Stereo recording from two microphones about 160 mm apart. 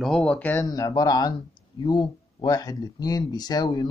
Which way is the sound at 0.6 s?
20° left (ahead or behind).